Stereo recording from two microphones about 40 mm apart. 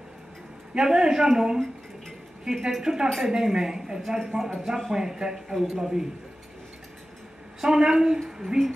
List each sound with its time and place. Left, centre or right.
0.7 s a woman's voice: centre
7.6 s speech: centre